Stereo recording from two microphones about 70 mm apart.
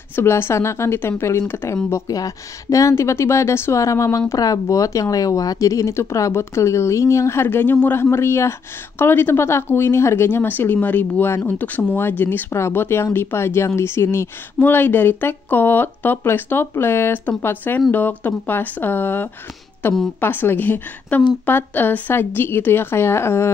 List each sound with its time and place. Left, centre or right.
0.1 s speech: left
2.1 s speech: left